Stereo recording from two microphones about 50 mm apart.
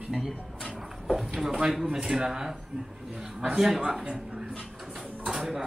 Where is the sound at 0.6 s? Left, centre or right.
Centre.